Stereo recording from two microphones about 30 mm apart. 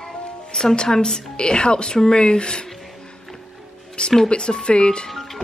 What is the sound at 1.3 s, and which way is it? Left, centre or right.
A woman's voice, left.